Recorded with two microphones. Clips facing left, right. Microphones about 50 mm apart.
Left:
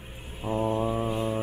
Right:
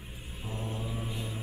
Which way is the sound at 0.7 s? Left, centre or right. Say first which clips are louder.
Left 11 dB; left.